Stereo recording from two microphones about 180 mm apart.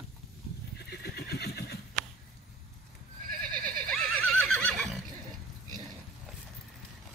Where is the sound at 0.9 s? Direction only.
60° left (ahead or behind).